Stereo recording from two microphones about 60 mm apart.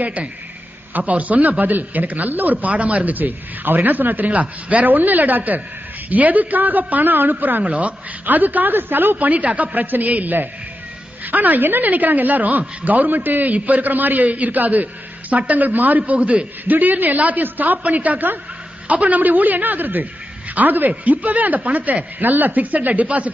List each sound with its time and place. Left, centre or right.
0.0 s a woman's voice: right